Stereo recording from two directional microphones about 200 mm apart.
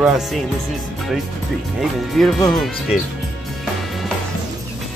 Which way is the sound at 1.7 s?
Centre (ahead or behind).